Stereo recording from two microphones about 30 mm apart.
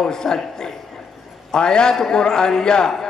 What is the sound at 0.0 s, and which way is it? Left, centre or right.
A man's voice, centre.